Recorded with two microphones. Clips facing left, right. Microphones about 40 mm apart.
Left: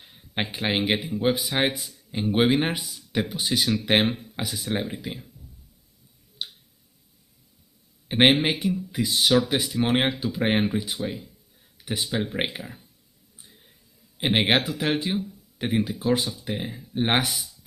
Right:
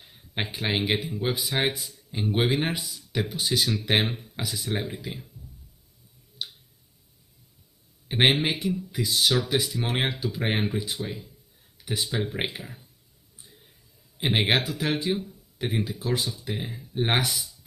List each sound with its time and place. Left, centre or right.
0.1 s a sound: centre
0.7 s speech: centre
4.4 s speech: centre
4.6 s speech: left
6.4 s tick-tock: centre
8.1 s speech: centre
10.2 s speech: centre
11.8 s speech: left
14.1 s speech: centre
14.6 s speech: left
16.4 s speech: centre